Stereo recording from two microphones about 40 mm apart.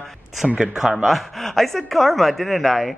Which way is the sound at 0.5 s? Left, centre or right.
Centre.